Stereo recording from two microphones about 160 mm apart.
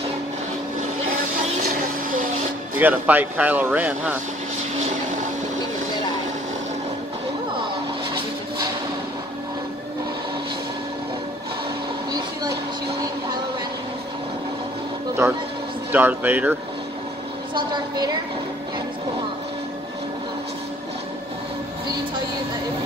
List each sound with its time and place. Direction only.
2.8 s speech: 10° right (ahead or behind)
15.2 s speech: 15° right (ahead or behind)
17.6 s vehicle: 25° right (ahead or behind)